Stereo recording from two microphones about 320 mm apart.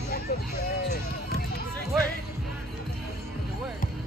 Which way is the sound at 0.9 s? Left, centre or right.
Left.